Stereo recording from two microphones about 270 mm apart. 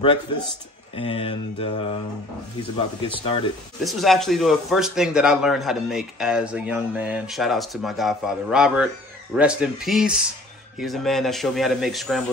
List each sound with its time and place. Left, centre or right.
0.9 s mantra: centre
3.1 s mantra: centre
3.8 s speech: centre